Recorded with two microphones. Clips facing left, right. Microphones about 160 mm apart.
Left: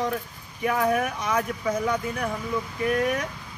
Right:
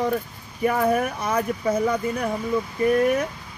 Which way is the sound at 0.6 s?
40° right (ahead or behind).